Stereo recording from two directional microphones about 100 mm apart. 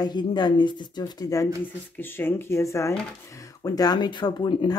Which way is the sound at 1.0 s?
35° left (ahead or behind).